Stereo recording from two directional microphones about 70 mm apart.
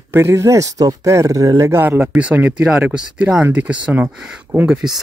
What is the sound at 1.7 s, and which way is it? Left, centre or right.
Speech, right.